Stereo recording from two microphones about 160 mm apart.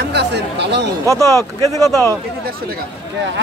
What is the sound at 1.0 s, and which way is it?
Speech, 20° right (ahead or behind).